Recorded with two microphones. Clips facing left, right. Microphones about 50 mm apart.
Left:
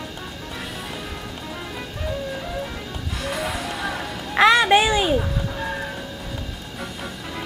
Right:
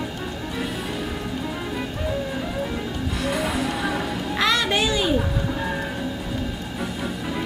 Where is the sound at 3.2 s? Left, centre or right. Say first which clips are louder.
Right 2 dB; centre.